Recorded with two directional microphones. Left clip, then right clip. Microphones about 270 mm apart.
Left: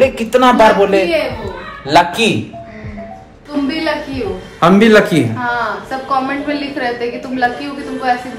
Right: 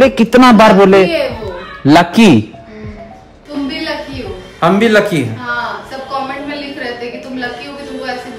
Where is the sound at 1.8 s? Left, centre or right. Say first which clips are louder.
Right 2 dB; right.